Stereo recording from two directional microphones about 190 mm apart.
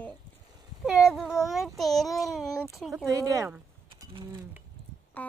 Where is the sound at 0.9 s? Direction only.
Centre (ahead or behind).